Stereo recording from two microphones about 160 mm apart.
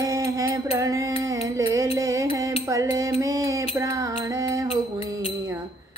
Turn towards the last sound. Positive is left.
turn(degrees=-20)  # may be behind; listen again after turning